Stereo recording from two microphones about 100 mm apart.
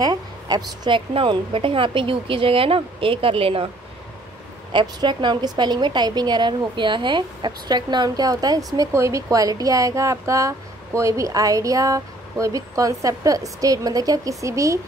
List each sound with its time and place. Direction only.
0.0 s a sound: 40° right (ahead or behind)
0.8 s a woman's voice: 55° right (ahead or behind)
4.7 s a woman's voice: 50° right (ahead or behind); by 14.8 s 30° right (ahead or behind)